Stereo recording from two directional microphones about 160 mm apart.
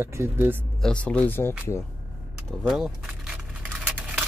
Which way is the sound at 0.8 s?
5° left (ahead or behind).